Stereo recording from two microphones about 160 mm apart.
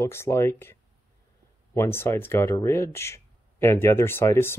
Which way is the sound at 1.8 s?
15° left (ahead or behind).